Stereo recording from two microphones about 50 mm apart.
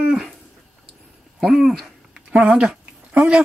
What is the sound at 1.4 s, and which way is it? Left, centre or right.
Dog, centre.